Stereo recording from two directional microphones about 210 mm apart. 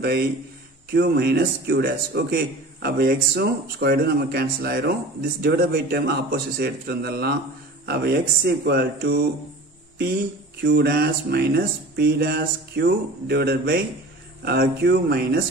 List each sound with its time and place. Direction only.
0.9 s a man's voice: 50° right (ahead or behind)
10.6 s a man's voice: 50° right (ahead or behind)